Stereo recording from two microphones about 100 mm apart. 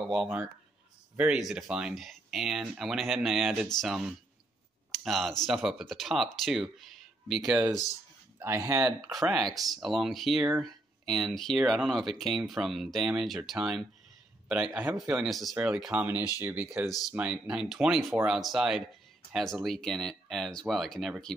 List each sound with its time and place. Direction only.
0.0 s speech: 5° right (ahead or behind)
1.4 s speech: 5° right (ahead or behind)
8.4 s speech: 25° right (ahead or behind)
9.0 s speech: centre (ahead or behind)
14.7 s speech: 20° right (ahead or behind)
15.1 s speech: centre (ahead or behind); by 16.6 s 20° right (ahead or behind)
17.1 s speech: 10° right (ahead or behind)